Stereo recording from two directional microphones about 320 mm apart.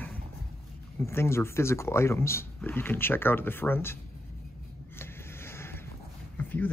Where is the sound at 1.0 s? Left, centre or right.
Centre.